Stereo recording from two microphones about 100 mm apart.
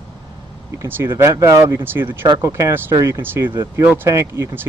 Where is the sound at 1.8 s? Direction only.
20° right (ahead or behind).